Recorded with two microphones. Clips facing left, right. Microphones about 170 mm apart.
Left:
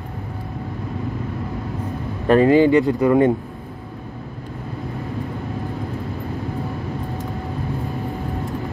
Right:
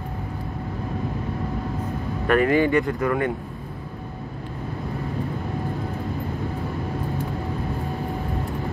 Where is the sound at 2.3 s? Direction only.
25° left (ahead or behind).